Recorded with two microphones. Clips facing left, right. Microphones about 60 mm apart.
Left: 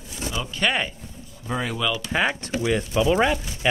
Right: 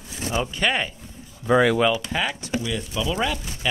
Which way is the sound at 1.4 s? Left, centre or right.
Right.